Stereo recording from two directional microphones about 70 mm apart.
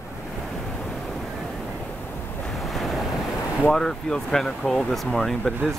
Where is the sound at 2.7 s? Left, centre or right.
Centre.